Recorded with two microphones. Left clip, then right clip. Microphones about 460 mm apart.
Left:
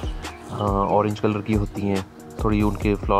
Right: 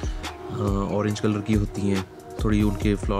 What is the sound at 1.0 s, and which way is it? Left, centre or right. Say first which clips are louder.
Speech: left 3 dB; centre.